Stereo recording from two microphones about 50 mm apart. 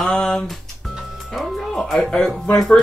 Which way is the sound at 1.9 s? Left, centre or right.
Centre.